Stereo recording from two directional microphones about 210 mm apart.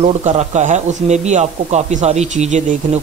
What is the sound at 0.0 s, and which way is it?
A man's voice, 30° right (ahead or behind).